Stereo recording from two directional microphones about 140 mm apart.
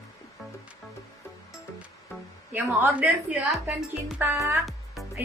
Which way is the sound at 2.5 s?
15° right (ahead or behind).